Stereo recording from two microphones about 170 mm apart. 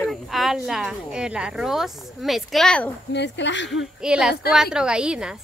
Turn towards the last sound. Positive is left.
turn(degrees=-5)  # may be behind; listen again after turning